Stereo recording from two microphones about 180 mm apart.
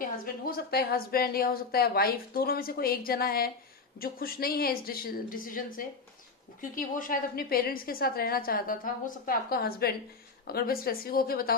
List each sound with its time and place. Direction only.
0.2 s a woman's voice: 55° left (ahead or behind)